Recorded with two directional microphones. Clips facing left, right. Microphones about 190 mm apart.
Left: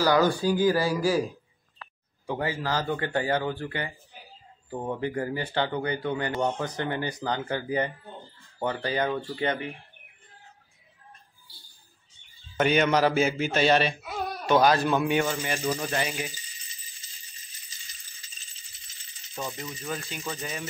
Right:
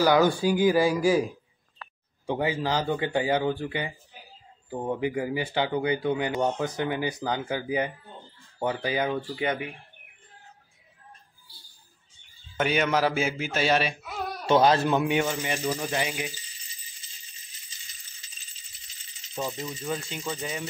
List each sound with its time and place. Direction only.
0.0 s speech: 15° right (ahead or behind)
2.2 s speech: 15° right (ahead or behind)
12.5 s a man's voice: 5° right (ahead or behind)
14.4 s speech: 25° right (ahead or behind)
19.3 s speech: 10° right (ahead or behind)